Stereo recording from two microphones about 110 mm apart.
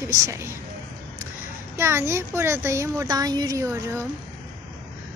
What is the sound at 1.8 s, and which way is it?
Speech, 25° right (ahead or behind).